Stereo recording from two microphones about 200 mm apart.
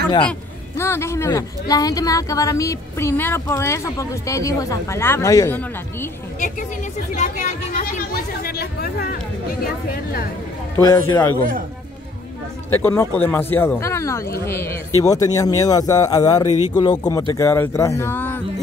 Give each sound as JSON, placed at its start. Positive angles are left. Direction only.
{"t": 0.7, "sound": "speech", "side_deg": 15}
{"t": 7.2, "sound": "speech", "side_deg": 35}
{"t": 10.8, "sound": "speech", "side_deg": 15}
{"t": 12.7, "sound": "speech", "side_deg": 10}